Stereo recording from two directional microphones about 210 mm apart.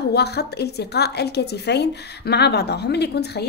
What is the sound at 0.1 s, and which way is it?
A woman's voice, 50° left (ahead or behind).